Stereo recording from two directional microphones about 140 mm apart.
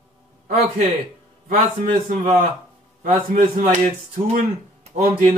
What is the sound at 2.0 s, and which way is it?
Speech, 60° right (ahead or behind).